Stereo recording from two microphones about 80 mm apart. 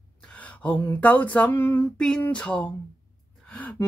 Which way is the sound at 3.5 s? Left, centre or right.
Centre.